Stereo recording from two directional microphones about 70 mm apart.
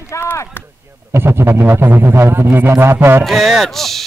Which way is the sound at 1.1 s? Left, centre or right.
Right.